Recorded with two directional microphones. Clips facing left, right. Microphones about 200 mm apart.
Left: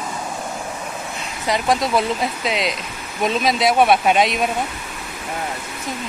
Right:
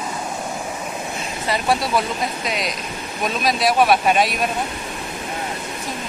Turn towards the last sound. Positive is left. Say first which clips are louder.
# left 1 dB
turn(degrees=20)  # may be behind; listen again after turning